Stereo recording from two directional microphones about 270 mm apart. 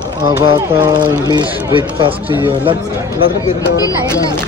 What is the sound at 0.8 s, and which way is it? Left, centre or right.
Speech, centre.